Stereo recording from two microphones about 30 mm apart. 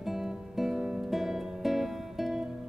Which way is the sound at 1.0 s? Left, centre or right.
Centre.